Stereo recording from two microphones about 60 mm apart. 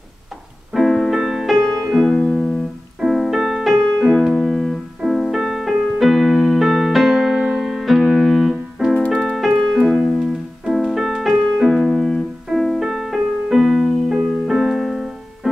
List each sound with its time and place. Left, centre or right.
0.7 s piano: centre
9.1 s keyboard: centre
10.1 s music: centre
12.5 s piano: centre
14.0 s keyboard: centre